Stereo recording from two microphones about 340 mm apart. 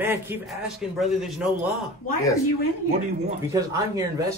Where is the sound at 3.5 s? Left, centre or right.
Centre.